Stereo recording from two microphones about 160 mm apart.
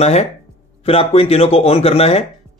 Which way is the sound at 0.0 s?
40° left (ahead or behind).